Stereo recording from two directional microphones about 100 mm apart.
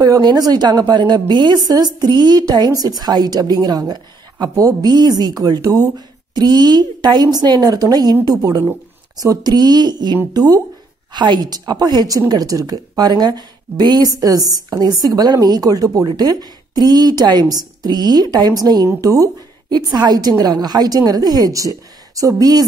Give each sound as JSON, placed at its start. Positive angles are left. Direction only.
{"t": 0.0, "sound": "a woman's voice", "side_deg": -40}